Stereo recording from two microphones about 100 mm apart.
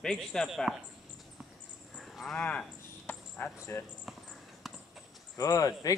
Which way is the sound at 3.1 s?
15° left (ahead or behind).